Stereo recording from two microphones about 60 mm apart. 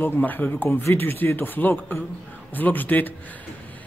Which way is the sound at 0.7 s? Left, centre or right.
Left.